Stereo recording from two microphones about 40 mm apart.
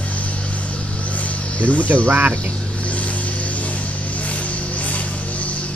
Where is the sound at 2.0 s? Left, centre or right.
Right.